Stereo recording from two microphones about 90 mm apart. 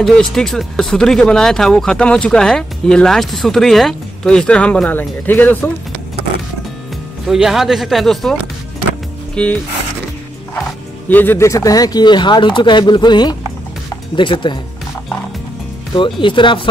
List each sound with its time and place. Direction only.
0.0 s speech: 5° left (ahead or behind); by 5.7 s 20° left (ahead or behind)
7.2 s speech: 5° right (ahead or behind); by 9.6 s 10° left (ahead or behind)
11.1 s speech: 20° left (ahead or behind)
11.3 s speech: 35° left (ahead or behind); by 13.4 s 55° left (ahead or behind)
14.1 s speech: 65° left (ahead or behind)
15.9 s speech: 65° left (ahead or behind)